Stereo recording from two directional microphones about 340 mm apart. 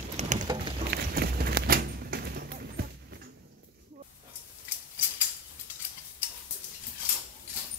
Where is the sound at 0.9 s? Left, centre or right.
Right.